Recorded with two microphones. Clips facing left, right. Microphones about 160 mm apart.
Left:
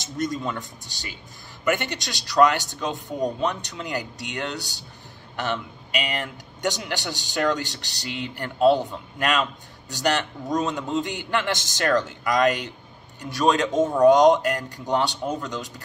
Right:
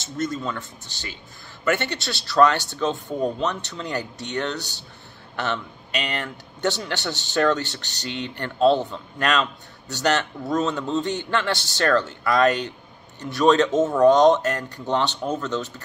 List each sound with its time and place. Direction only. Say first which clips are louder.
0.0 s speech: even; 15° left (ahead or behind)